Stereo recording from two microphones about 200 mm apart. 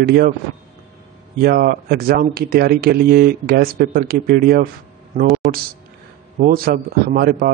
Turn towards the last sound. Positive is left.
turn(degrees=-50)  # may be behind; listen again after turning